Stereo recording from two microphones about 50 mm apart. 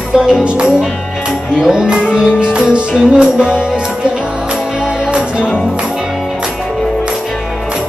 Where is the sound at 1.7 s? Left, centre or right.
Centre.